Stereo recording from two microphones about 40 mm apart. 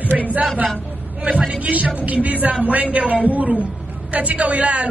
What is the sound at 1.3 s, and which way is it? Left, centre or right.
A woman's voice, right.